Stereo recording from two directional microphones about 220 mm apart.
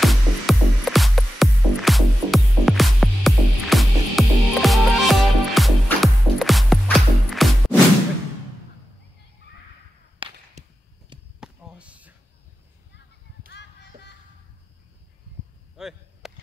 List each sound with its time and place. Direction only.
0.0 s music: centre (ahead or behind)
10.1 s whip: 25° right (ahead or behind)
11.3 s basketball bounce: 5° right (ahead or behind)
13.5 s music: 50° left (ahead or behind)
15.7 s chop: centre (ahead or behind)